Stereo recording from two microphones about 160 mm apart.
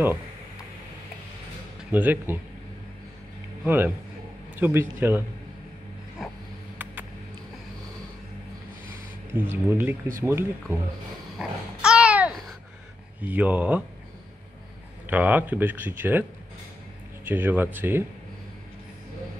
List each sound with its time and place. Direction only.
1.9 s speech: 10° right (ahead or behind)
3.6 s speech: 10° right (ahead or behind)
9.3 s speech: 15° right (ahead or behind)
11.3 s babbling: 5° right (ahead or behind)
13.2 s speech: 10° right (ahead or behind)
15.0 s speech: 10° right (ahead or behind)